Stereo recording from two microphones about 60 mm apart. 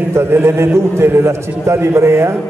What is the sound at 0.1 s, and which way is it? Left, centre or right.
A man's voice, right.